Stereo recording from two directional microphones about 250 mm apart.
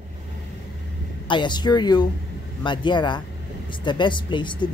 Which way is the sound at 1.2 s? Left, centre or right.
Centre.